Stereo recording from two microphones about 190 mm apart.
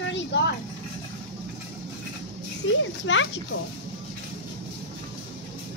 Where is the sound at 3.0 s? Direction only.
90° left.